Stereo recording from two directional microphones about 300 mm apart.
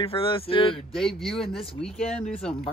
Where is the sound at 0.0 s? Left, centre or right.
Centre.